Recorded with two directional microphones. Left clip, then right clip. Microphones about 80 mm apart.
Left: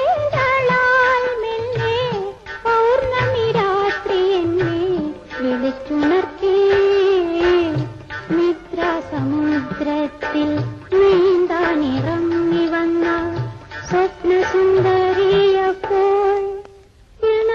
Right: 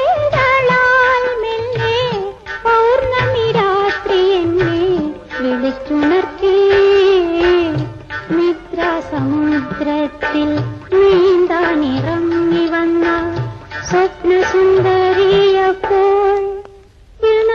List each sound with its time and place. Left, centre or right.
0.0 s music: left
0.4 s music: left
1.1 s music of bollywood: left
1.8 s music: left
3.4 s music: left
5.9 s music: left
10.2 s music: left
11.0 s music of bollywood: left
12.3 s a sound: left
12.8 s music: left
15.8 s wind instrument: centre
17.2 s busy signal: left